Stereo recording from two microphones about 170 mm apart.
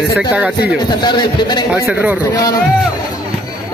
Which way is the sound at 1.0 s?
25° left (ahead or behind).